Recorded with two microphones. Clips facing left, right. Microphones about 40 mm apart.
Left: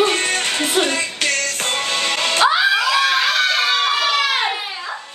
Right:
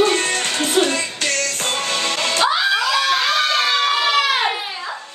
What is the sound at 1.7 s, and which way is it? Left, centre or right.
Music, centre.